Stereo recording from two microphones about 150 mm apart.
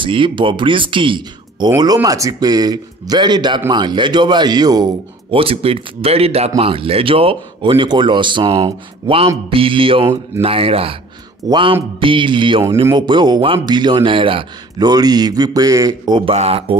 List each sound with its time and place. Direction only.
0.0 s speech: 35° right (ahead or behind)